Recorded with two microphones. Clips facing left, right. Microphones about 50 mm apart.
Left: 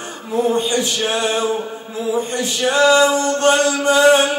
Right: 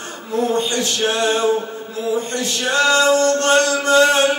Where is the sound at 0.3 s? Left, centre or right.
Centre.